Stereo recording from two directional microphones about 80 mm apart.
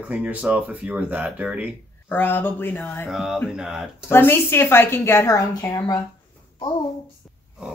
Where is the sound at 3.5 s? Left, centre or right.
Centre.